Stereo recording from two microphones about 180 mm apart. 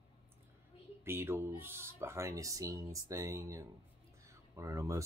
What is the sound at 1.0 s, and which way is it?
Speech, 15° right (ahead or behind).